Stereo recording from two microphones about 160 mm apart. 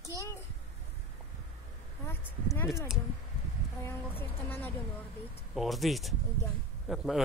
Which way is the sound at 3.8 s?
10° left (ahead or behind).